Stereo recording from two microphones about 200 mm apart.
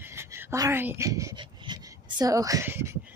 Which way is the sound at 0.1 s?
15° right (ahead or behind).